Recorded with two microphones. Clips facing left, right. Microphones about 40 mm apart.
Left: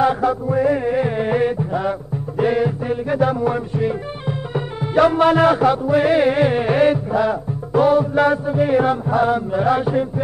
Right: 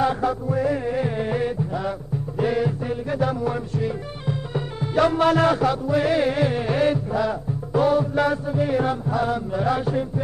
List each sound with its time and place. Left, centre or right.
0.0 s music: centre